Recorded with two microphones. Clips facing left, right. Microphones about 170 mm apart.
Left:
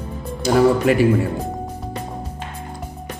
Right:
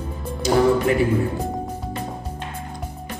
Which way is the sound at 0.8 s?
85° left.